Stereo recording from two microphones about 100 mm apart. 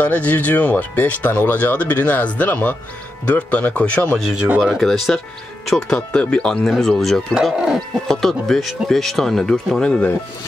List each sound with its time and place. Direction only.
0.0 s speech: 15° left (ahead or behind)
4.6 s speech: centre (ahead or behind)
7.5 s chicken: 5° right (ahead or behind)
8.1 s speech: 5° left (ahead or behind)